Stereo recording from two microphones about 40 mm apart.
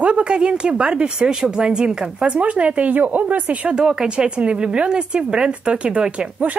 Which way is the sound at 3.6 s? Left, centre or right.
Right.